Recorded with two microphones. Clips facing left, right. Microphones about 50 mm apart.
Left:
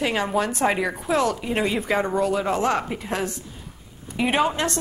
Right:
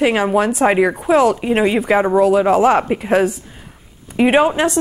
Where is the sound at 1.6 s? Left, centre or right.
Right.